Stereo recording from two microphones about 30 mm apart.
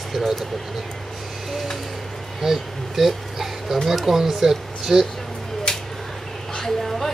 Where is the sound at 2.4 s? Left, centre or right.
Centre.